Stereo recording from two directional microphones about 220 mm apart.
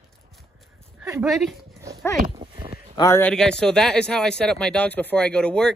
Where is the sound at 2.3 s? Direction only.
15° right (ahead or behind).